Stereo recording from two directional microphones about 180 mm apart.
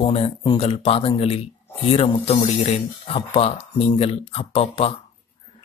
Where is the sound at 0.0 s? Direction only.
30° left (ahead or behind).